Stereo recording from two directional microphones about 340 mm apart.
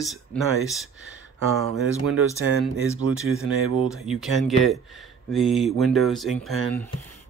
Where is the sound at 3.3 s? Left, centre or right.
Centre.